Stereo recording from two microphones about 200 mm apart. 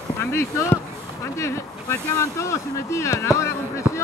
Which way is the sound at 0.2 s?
15° left (ahead or behind).